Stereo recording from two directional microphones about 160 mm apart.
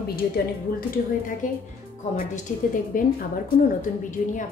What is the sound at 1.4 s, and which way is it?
A woman's voice, 55° left (ahead or behind).